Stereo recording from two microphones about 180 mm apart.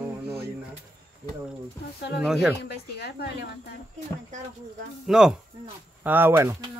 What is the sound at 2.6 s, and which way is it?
Speech, 65° left (ahead or behind).